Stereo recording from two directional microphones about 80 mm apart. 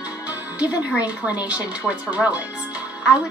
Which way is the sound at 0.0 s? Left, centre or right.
Centre.